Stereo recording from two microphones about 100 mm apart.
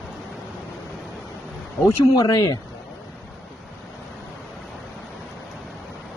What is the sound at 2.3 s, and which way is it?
Speech, 40° left (ahead or behind).